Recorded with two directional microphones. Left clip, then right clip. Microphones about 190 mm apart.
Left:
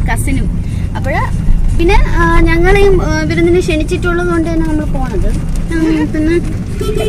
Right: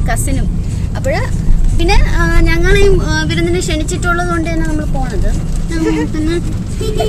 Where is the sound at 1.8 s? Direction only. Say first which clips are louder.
Left 3 dB; 10° right (ahead or behind).